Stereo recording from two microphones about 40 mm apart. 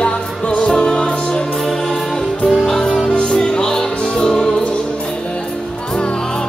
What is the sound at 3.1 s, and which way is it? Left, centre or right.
Music, centre.